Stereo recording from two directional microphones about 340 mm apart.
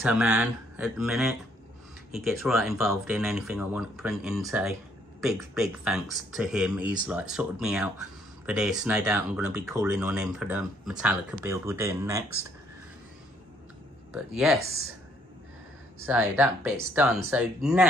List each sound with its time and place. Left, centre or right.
0.0 s speech: centre
14.1 s speech: centre
16.1 s speech: centre